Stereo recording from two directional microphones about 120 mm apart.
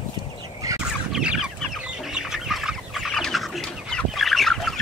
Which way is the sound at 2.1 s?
5° right (ahead or behind).